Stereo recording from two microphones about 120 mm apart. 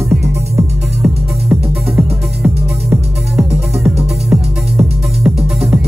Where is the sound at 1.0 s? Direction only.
15° right (ahead or behind).